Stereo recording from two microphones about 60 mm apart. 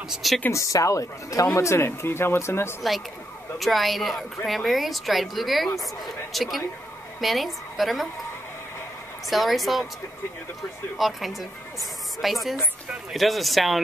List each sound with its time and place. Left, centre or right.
0.1 s speech: centre
0.5 s speech: left
1.9 s speech: left
3.5 s a woman's voice: centre
9.3 s speech: centre
11.0 s speech: centre